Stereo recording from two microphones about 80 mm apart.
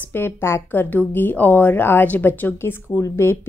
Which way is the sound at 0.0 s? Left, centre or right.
Left.